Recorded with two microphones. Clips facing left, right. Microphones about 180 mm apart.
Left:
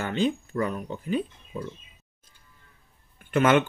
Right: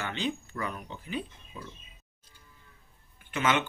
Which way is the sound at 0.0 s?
45° left (ahead or behind).